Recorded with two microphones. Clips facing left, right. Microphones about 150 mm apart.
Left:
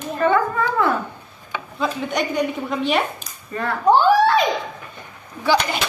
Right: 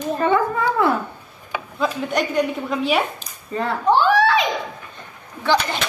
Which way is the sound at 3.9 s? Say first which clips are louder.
Left 2 dB; 45° left (ahead or behind).